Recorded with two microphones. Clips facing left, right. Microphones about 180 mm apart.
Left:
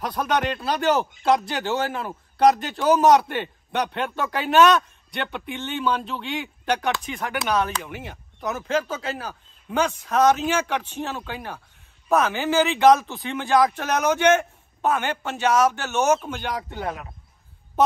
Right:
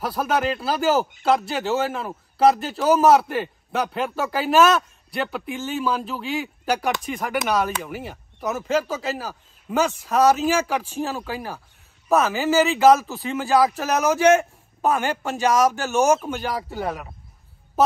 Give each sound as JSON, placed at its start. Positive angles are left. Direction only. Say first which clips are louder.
{"t": 0.0, "sound": "speech", "louder": "right 1 dB", "side_deg": -5}
{"t": 14.9, "sound": "speech", "louder": "right 2 dB", "side_deg": -35}
{"t": 16.2, "sound": "speech", "louder": "right 3 dB", "side_deg": -5}